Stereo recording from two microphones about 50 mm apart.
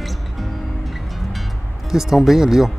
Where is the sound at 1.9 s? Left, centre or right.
Centre.